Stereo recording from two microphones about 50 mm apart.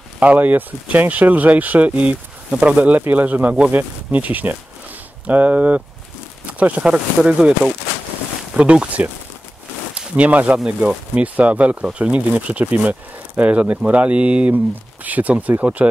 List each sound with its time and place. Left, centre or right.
0.2 s speech: right
6.4 s a sound: right
6.8 s speech: right
8.5 s speech: right